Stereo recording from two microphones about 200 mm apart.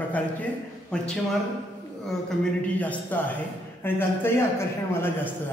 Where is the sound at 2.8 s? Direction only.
5° left (ahead or behind).